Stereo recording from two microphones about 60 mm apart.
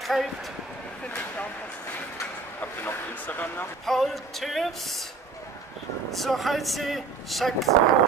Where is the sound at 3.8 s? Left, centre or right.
Centre.